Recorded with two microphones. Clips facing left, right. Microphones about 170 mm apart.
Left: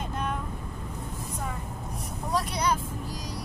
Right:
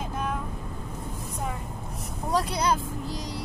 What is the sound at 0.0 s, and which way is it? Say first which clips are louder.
Vehicle: right 1 dB; 5° right (ahead or behind).